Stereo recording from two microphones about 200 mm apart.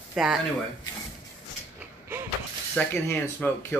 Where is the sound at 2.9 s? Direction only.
10° left (ahead or behind).